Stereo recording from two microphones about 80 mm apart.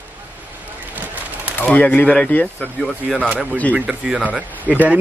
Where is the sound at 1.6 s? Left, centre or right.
Centre.